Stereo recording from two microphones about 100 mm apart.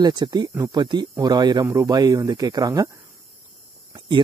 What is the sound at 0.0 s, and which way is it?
Speech, 45° right (ahead or behind).